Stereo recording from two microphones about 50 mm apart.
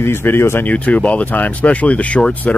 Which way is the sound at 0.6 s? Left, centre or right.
Left.